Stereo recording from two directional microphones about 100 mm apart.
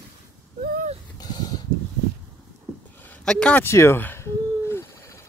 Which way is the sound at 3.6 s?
25° left (ahead or behind).